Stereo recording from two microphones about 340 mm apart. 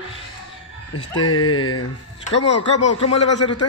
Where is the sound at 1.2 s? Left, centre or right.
Left.